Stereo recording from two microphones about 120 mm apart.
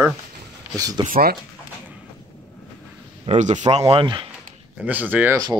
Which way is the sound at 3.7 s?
55° right (ahead or behind).